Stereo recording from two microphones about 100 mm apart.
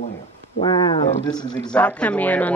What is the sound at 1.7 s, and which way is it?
Speech, 10° left (ahead or behind).